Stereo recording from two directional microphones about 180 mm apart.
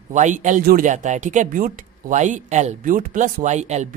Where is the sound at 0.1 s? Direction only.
45° right (ahead or behind).